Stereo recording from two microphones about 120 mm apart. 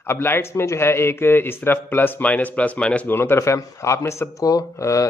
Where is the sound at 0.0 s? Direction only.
20° left (ahead or behind).